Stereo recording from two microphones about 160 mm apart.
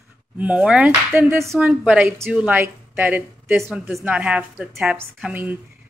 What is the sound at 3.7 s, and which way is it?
Speech, 5° right (ahead or behind).